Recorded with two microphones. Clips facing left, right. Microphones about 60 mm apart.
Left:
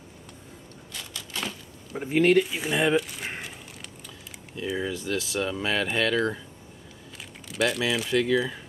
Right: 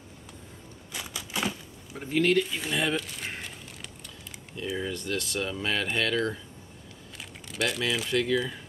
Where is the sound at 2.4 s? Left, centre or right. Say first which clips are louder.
Left 4 dB; centre.